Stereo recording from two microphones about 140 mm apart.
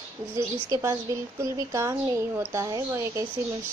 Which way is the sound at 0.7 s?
25° right (ahead or behind).